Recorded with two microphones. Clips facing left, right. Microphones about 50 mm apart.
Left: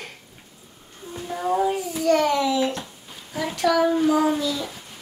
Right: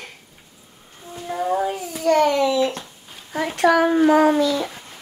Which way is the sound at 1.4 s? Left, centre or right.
Centre.